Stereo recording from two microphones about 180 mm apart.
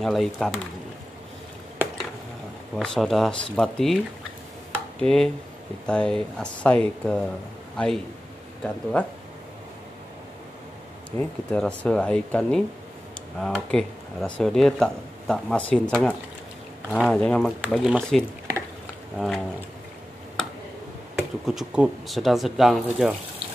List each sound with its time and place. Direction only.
0.0 s speech: centre (ahead or behind)
2.8 s speech: centre (ahead or behind)
5.0 s a man's voice: 5° left (ahead or behind)
11.1 s speech: 5° left (ahead or behind)
21.2 s speech: 5° right (ahead or behind)